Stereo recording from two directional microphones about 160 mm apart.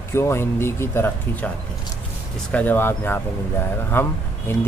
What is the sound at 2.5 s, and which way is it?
Speech, 10° left (ahead or behind).